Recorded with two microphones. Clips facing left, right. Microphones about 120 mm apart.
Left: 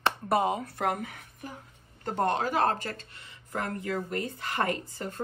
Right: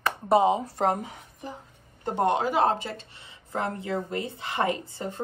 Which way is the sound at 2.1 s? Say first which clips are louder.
Right 3 dB; 10° right (ahead or behind).